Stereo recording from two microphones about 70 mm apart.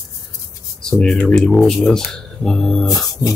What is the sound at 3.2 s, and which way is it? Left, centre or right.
Rub, left.